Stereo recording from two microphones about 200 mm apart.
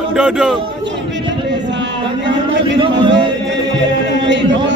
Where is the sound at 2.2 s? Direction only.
65° right (ahead or behind).